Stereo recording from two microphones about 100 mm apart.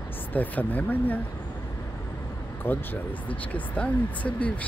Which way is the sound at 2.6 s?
20° left (ahead or behind).